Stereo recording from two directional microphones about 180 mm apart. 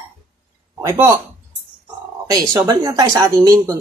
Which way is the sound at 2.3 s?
20° right (ahead or behind).